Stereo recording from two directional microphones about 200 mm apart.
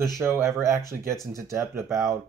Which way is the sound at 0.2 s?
15° right (ahead or behind).